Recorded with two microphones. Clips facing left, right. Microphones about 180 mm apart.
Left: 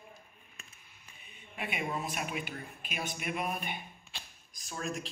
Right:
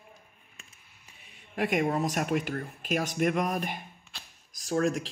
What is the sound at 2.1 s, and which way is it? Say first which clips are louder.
Speech: right 9 dB; 75° right (ahead or behind).